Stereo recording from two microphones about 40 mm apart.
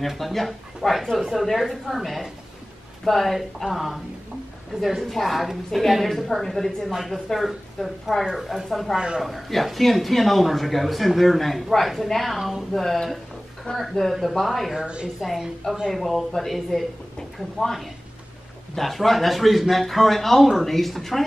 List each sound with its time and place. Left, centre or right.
0.0 s speech: centre
5.0 s speech: centre
8.9 s a man's voice: centre
9.2 s speech: centre
14.8 s a man's voice: right
15.1 s a woman's voice: centre